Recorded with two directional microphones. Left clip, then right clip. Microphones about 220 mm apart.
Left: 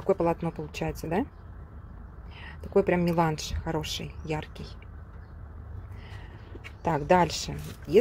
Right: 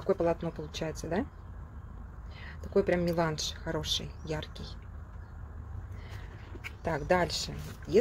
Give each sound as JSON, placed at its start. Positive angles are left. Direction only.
{"t": 0.1, "sound": "speech", "side_deg": 20}
{"t": 2.4, "sound": "speech", "side_deg": 25}
{"t": 6.8, "sound": "speech", "side_deg": 25}